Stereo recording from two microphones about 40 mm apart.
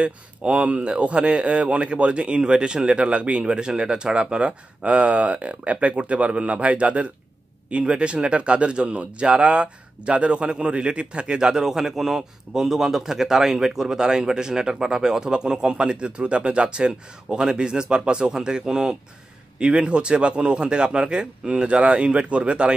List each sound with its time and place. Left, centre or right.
0.0 s speech: right